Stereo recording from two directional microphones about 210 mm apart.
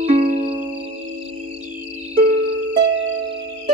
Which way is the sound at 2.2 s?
40° right (ahead or behind).